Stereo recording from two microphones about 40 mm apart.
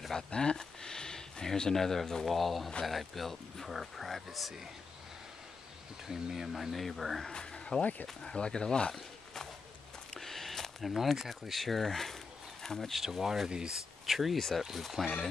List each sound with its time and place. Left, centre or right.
0.3 s speech: left; by 4.6 s centre
6.0 s speech: centre
7.5 s a sound: left
8.2 s speech: left
8.9 s walk: centre
10.2 s a sound: centre
11.1 s speech: centre
12.9 s speech: centre
14.0 s speech: centre